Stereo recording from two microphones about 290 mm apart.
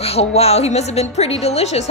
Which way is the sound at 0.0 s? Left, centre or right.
Left.